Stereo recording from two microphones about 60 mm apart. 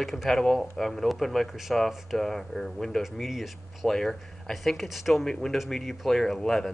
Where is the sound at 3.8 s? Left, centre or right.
Centre.